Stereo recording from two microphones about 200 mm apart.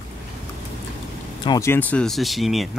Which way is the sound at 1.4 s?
15° left (ahead or behind).